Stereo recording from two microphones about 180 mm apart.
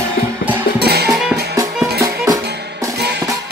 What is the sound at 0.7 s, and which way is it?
Music, 65° right (ahead or behind).